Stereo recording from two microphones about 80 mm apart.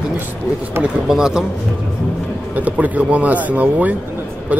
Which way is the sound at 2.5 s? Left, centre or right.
Centre.